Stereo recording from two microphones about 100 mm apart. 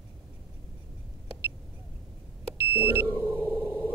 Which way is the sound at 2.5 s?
25° right (ahead or behind).